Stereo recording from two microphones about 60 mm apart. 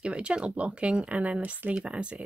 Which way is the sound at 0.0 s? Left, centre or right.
Centre.